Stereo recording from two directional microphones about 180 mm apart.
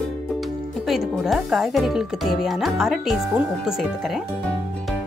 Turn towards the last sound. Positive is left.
turn(degrees=0)  # may be behind; listen again after turning